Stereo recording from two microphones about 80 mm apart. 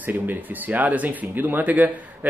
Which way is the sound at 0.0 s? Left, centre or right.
Right.